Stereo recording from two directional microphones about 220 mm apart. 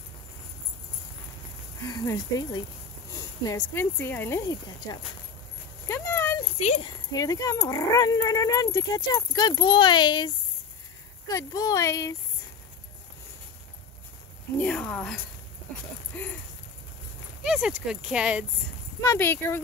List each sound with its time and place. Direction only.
1.9 s speech: 15° left (ahead or behind)
5.9 s a sound: 10° left (ahead or behind)
6.6 s speech: 30° left (ahead or behind)
7.1 s speech: 15° left (ahead or behind)
14.6 s speech: 5° left (ahead or behind)
17.4 s speech: 5° right (ahead or behind)
19.0 s speech: 10° left (ahead or behind)